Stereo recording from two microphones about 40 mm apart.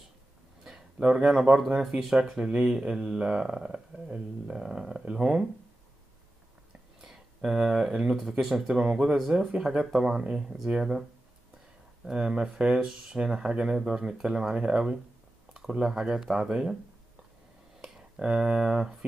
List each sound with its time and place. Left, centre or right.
0.7 s a sound: centre
1.1 s speech: right
3.0 s speech: right
3.3 s speech: centre
7.1 s a sound: centre
8.0 s speech: centre
12.1 s speech: centre
18.2 s speech: right